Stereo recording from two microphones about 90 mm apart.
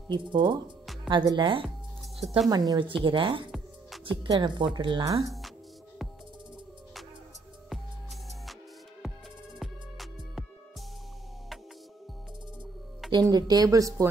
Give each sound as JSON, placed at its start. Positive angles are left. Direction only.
{"t": 0.1, "sound": "speech", "side_deg": -55}
{"t": 2.1, "sound": "speech", "side_deg": 0}
{"t": 2.5, "sound": "speech", "side_deg": -45}
{"t": 2.8, "sound": "a woman's voice", "side_deg": -70}
{"t": 5.0, "sound": "speech", "side_deg": -40}
{"t": 9.6, "sound": "music", "side_deg": 0}
{"t": 13.3, "sound": "speech", "side_deg": -50}